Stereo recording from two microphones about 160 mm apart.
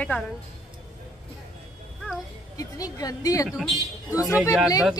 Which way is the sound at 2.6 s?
20° left (ahead or behind).